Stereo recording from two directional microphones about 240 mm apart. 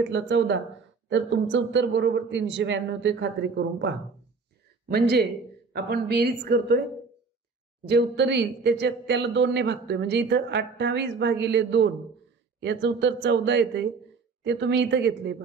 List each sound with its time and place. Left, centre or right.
0.0 s a woman's voice: right
7.8 s a woman's voice: right